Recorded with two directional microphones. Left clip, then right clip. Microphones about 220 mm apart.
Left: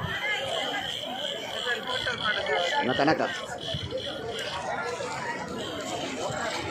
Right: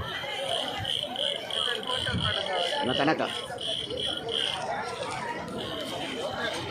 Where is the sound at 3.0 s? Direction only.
Centre (ahead or behind).